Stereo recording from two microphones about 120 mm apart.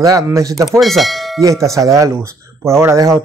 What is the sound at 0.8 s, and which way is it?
Speech, centre (ahead or behind).